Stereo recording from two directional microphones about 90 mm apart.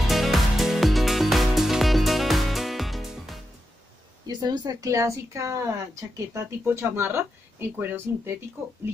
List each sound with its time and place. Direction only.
0.0 s music: centre (ahead or behind)
4.3 s speech: 50° right (ahead or behind); by 8.7 s 25° right (ahead or behind)